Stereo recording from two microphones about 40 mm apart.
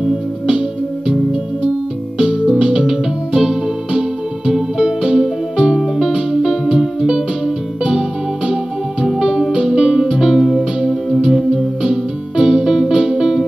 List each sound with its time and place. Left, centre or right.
0.5 s music: centre
2.1 s music: centre
5.8 s music: centre
9.5 s music: right
9.8 s music: centre
10.3 s music: centre
11.1 s music: centre